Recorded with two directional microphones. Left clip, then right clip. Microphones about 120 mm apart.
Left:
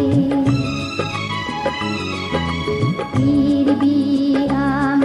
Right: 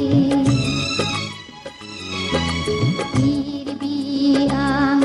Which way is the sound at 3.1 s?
35° right (ahead or behind).